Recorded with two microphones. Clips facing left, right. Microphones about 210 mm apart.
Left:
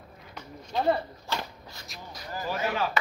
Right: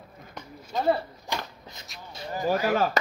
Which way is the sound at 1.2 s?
20° right (ahead or behind).